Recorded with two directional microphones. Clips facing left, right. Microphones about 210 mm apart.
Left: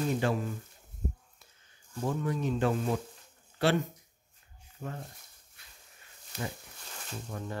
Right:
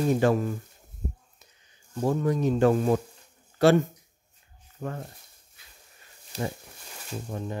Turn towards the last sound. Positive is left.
turn(degrees=-20)  # may be behind; listen again after turning